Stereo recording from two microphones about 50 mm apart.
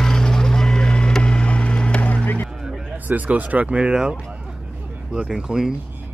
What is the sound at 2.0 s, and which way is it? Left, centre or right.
Vehicle, left.